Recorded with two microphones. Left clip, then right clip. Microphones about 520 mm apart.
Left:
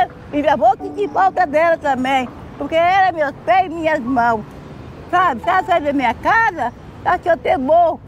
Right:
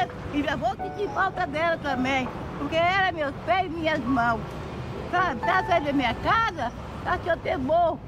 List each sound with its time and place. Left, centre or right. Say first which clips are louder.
0.0 s speech: left 10 dB; left